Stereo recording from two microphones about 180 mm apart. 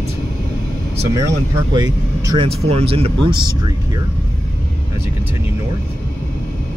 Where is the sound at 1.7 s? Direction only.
25° right (ahead or behind).